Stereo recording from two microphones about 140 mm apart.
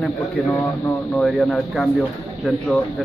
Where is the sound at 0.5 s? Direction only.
25° left (ahead or behind).